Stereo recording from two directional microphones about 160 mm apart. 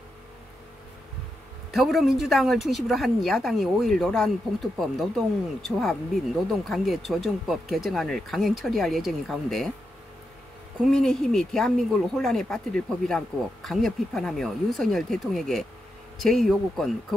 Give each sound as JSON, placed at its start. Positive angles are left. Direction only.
{"t": 1.7, "sound": "speech", "side_deg": 0}
{"t": 10.9, "sound": "speech", "side_deg": 5}